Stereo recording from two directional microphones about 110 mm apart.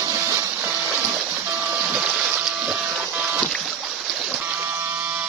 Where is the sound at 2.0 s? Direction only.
5° right (ahead or behind).